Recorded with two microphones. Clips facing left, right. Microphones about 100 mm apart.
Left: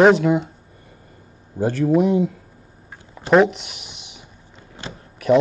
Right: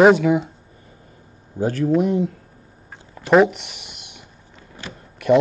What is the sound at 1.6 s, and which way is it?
Speech, 5° left (ahead or behind).